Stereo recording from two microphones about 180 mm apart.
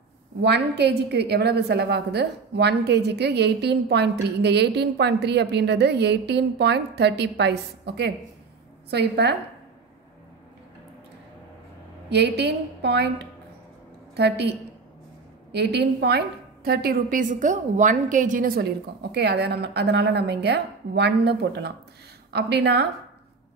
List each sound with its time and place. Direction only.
0.4 s a woman's voice: 70° right (ahead or behind)
12.1 s a woman's voice: 70° right (ahead or behind)
15.5 s a woman's voice: 70° right (ahead or behind)
19.1 s a woman's voice: 70° right (ahead or behind)